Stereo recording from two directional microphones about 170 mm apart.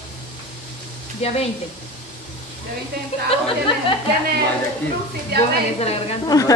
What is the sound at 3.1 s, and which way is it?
Speech, 40° left (ahead or behind).